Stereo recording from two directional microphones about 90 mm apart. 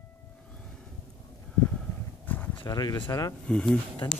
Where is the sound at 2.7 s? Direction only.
45° left (ahead or behind).